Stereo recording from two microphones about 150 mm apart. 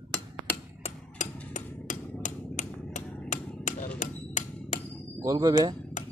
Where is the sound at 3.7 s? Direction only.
55° left (ahead or behind).